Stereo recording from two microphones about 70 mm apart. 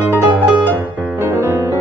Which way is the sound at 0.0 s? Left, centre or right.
Right.